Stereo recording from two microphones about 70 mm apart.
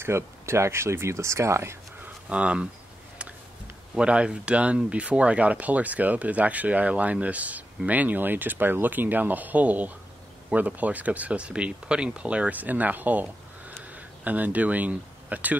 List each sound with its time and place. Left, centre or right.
0.0 s speech: right
2.2 s speech: centre
3.9 s speech: centre